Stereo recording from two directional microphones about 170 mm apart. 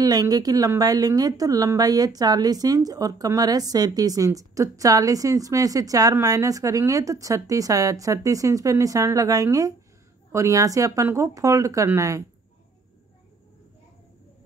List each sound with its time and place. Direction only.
0.0 s a woman's voice: 20° right (ahead or behind)